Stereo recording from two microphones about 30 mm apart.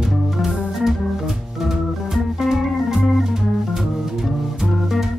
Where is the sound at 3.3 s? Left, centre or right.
Centre.